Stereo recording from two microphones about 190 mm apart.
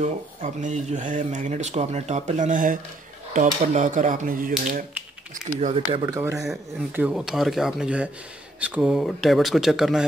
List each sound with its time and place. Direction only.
0.0 s speech: 40° right (ahead or behind)
6.0 s speech: 15° right (ahead or behind)